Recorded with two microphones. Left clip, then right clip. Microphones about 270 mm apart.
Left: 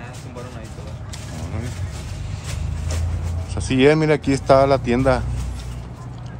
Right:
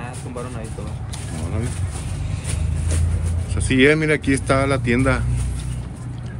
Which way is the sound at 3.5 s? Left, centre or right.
Centre.